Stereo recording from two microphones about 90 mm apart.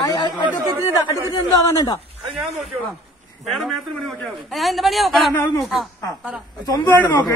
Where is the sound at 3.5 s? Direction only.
Centre (ahead or behind).